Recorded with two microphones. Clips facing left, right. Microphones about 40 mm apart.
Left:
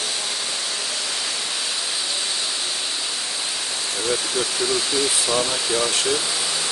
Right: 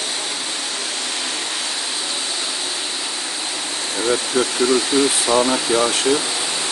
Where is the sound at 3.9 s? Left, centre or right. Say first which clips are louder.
Right 6 dB; right.